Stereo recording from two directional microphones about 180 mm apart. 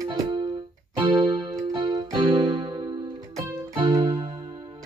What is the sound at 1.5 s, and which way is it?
Music, 20° right (ahead or behind).